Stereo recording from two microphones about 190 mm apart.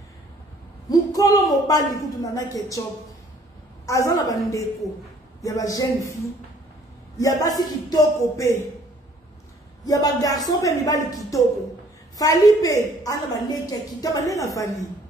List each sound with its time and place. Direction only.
0.8 s a sound: 20° left (ahead or behind)
1.7 s a woman's voice: 20° left (ahead or behind)
3.8 s a woman's voice: 15° left (ahead or behind)
7.2 s a woman's voice: 20° left (ahead or behind)
9.8 s a woman's voice: 20° left (ahead or behind)